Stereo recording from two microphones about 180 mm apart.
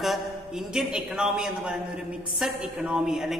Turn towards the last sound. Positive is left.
turn(degrees=0)  # may be behind; listen again after turning